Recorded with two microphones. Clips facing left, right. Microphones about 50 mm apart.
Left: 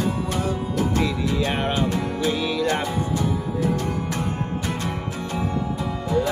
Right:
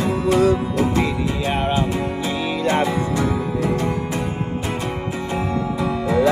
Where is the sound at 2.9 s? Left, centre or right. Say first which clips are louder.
Right 4 dB; right.